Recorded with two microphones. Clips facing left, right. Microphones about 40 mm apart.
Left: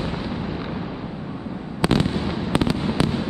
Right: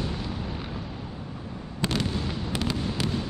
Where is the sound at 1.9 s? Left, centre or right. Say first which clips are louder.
Left 6 dB; left.